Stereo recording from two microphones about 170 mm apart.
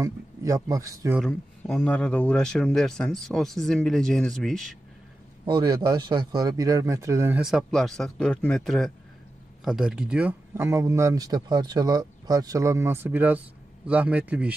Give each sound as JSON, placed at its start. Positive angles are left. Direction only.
{"t": 0.0, "sound": "speech", "side_deg": -20}
{"t": 1.2, "sound": "speech", "side_deg": 0}
{"t": 5.4, "sound": "speech", "side_deg": -25}
{"t": 7.4, "sound": "speech", "side_deg": 0}